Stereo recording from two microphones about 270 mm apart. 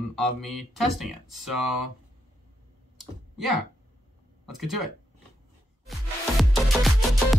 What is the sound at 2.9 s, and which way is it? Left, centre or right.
Clicking, centre.